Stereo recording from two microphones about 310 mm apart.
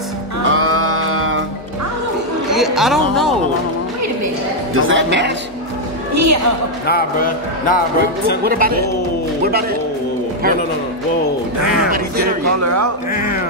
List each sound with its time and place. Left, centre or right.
0.5 s music: right
2.5 s a sound: centre
4.7 s a sound: right
6.1 s speech: right
6.9 s speech: left
8.5 s a man's voice: right
12.6 s speech: right